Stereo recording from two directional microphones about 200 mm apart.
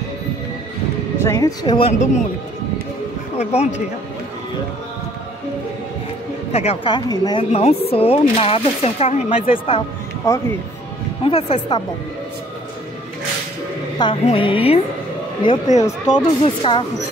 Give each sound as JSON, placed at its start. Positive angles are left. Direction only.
{"t": 1.2, "sound": "speech", "side_deg": 20}
{"t": 6.5, "sound": "speech", "side_deg": 30}
{"t": 13.9, "sound": "speech", "side_deg": 25}